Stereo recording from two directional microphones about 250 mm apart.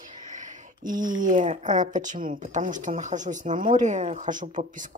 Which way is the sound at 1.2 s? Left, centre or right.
Right.